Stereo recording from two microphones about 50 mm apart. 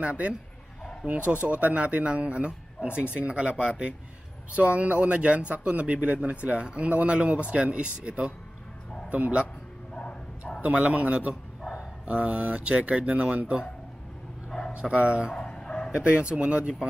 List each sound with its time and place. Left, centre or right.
0.0 s speech: right
10.6 s speech: right
14.8 s speech: right
15.3 s bow-wow: centre
15.9 s speech: right